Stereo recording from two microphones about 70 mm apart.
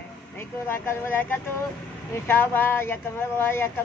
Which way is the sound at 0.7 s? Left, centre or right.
Left.